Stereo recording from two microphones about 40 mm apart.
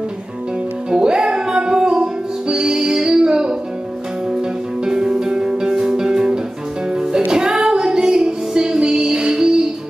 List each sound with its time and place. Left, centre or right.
0.8 s music: right
4.8 s music: centre